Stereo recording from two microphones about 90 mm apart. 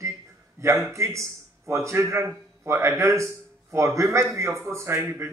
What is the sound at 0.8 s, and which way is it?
Speech, 35° right (ahead or behind).